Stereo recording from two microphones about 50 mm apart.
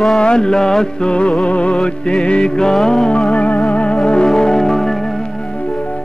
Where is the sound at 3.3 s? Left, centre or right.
Left; by 4.8 s centre.